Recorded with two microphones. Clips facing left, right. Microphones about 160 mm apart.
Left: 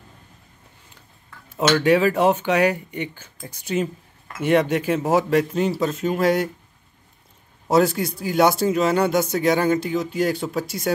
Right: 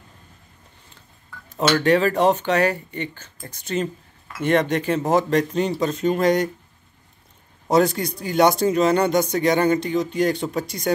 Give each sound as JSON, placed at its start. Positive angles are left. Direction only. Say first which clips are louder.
{"t": 1.8, "sound": "speech", "louder": "even", "side_deg": 10}
{"t": 7.6, "sound": "speech", "louder": "even", "side_deg": 5}